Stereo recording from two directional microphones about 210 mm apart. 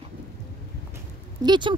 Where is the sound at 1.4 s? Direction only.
20° right (ahead or behind).